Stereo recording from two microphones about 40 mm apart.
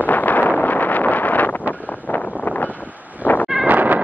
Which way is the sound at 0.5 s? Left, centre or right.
Left.